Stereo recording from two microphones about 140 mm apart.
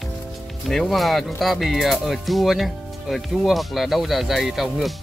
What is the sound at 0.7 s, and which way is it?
Speech, centre (ahead or behind).